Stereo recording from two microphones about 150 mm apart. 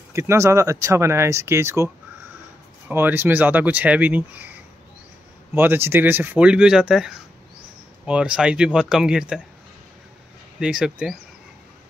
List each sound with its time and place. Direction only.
0.1 s speech: 20° right (ahead or behind)
2.9 s speech: 15° right (ahead or behind)
5.5 s speech: 15° right (ahead or behind)
10.6 s speech: 5° right (ahead or behind)